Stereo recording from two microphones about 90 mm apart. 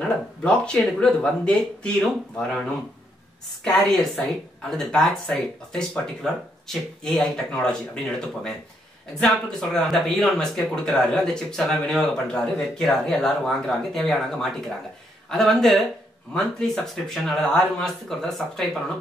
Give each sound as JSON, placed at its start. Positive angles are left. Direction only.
{"t": 0.4, "sound": "speech", "side_deg": 10}
{"t": 3.6, "sound": "speech", "side_deg": 5}
{"t": 9.2, "sound": "speech", "side_deg": 5}